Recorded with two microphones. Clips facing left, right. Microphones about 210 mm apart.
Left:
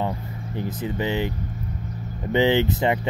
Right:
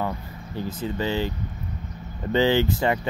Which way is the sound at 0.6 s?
15° left (ahead or behind).